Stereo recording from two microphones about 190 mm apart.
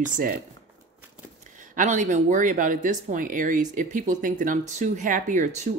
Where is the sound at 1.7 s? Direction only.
40° right (ahead or behind).